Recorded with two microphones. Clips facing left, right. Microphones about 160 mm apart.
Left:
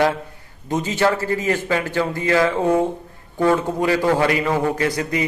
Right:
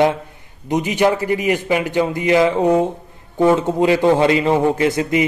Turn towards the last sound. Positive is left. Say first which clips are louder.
# right 4 dB
turn(degrees=-20)  # may be behind; listen again after turning